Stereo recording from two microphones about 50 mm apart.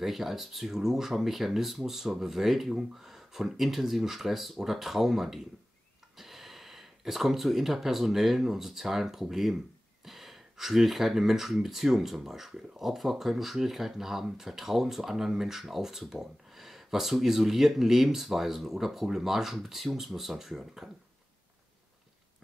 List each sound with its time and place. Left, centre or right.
0.0 s speech: centre